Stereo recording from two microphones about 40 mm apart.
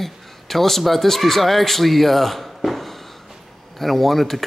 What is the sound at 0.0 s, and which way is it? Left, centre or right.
A man's voice, centre.